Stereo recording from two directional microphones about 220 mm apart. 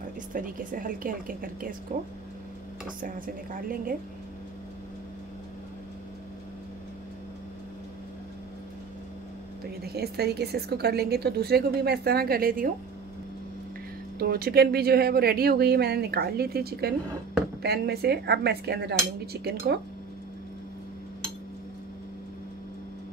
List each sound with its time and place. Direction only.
0.3 s a woman's voice: 40° right (ahead or behind)
3.5 s a woman's voice: 40° right (ahead or behind)
9.8 s a woman's voice: 45° right (ahead or behind)
14.1 s a woman's voice: 45° right (ahead or behind)